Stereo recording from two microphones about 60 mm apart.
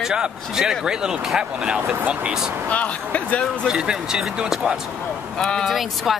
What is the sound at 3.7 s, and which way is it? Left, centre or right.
Speech, centre.